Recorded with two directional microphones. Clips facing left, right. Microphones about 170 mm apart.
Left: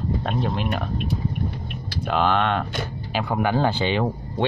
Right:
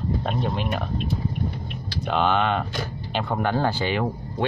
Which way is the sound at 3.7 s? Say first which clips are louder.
Left 2 dB; 25° left (ahead or behind).